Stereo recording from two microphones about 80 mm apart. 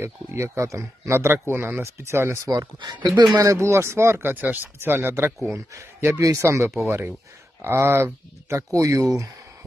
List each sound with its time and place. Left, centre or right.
0.0 s speech: right
2.4 s speech: right
2.8 s speech: right
3.3 s speech: right
6.2 s speech: right
8.7 s speech: right